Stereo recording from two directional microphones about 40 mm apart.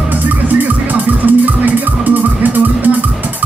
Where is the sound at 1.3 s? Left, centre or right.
Right.